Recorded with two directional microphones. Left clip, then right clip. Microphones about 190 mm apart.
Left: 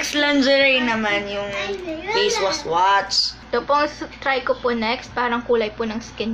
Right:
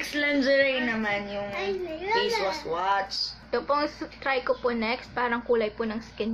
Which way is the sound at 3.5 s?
15° right (ahead or behind).